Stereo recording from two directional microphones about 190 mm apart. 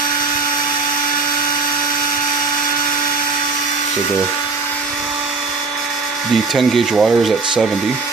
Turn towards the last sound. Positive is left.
turn(degrees=0)  # may be behind; listen again after turning